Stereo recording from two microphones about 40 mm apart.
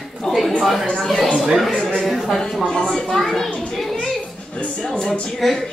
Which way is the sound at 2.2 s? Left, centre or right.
Centre.